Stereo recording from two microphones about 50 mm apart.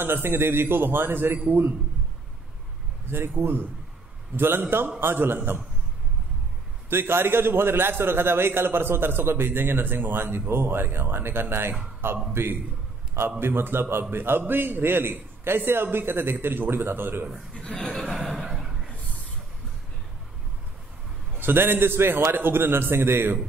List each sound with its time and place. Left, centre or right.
0.0 s a man's voice: right
3.1 s a man's voice: right
6.9 s a man's voice: right
17.9 s chuckle: centre
21.4 s a man's voice: right